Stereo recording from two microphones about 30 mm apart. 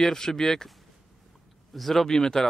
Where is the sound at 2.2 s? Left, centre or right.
Left.